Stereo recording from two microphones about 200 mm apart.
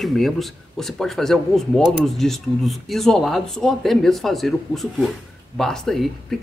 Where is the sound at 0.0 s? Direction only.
Centre (ahead or behind).